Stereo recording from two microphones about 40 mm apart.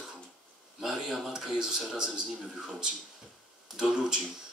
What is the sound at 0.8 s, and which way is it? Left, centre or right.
Speech, centre.